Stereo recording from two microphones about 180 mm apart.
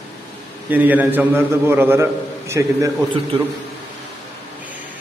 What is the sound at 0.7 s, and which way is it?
A man's voice, 10° right (ahead or behind).